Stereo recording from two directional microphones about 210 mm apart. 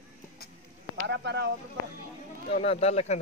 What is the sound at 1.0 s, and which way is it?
Speech, 55° right (ahead or behind).